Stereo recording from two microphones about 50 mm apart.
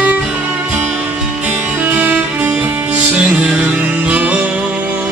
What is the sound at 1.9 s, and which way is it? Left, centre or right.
Music, right.